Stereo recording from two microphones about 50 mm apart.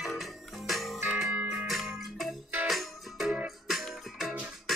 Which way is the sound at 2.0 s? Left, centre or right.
Centre.